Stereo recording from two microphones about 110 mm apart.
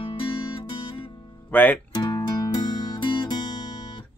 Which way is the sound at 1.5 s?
15° left (ahead or behind).